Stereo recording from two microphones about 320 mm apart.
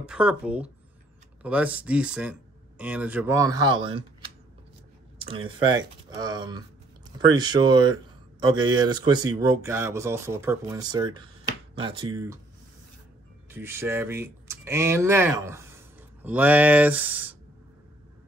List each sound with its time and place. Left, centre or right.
0.0 s speech: centre
5.2 s speech: centre
13.5 s speech: centre